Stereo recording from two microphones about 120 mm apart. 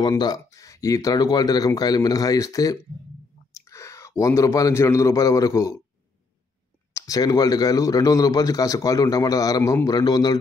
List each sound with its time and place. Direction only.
0.2 s a man's voice: 30° left (ahead or behind)
6.9 s a man's voice: 25° left (ahead or behind)